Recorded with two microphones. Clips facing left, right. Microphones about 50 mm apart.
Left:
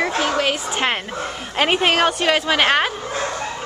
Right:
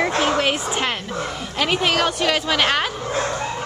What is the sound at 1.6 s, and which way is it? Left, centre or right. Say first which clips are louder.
Speech: left 3 dB; left.